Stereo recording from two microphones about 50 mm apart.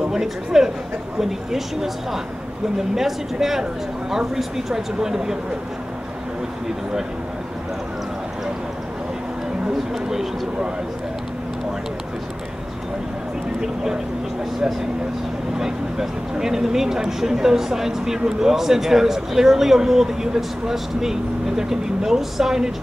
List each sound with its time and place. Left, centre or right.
0.0 s speech: centre
3.0 s speech: centre
9.7 s speech: centre
15.5 s speech: centre